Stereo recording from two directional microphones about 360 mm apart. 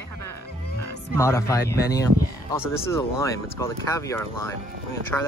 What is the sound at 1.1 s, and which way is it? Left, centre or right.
Speech, centre.